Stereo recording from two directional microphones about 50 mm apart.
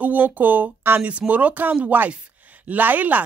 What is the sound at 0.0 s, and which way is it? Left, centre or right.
Speech, right.